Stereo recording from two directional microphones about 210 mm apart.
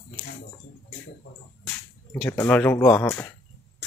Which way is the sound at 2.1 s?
10° left (ahead or behind).